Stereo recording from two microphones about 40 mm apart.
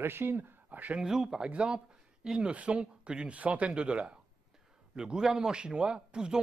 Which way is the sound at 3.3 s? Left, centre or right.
Right.